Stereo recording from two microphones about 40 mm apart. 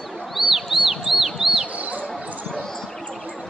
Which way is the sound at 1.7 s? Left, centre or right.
Right.